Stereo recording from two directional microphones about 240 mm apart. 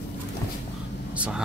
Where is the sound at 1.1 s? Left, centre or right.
Centre.